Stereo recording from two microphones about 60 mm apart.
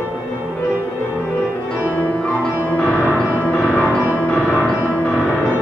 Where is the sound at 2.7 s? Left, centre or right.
Left.